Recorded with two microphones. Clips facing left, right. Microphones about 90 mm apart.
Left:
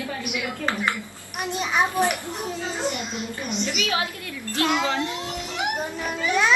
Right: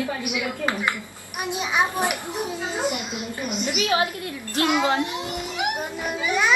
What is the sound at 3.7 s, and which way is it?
Speech, 30° right (ahead or behind).